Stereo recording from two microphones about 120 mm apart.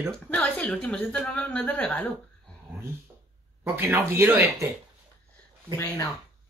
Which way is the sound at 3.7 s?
20° right (ahead or behind).